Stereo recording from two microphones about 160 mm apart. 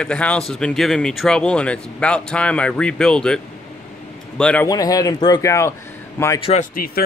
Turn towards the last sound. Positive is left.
turn(degrees=65)  # may be behind; listen again after turning